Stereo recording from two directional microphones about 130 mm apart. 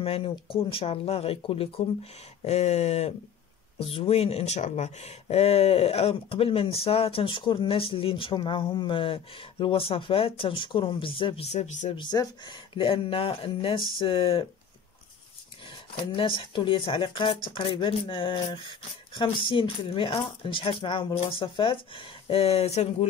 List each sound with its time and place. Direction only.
0.0 s speech: 45° left (ahead or behind)
2.4 s speech: 60° left (ahead or behind)
11.5 s speech: 65° left (ahead or behind)
11.9 s speech: 35° left (ahead or behind)
15.6 s speech: 40° left (ahead or behind)